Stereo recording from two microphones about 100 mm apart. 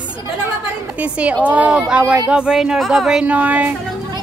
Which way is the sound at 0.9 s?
15° right (ahead or behind).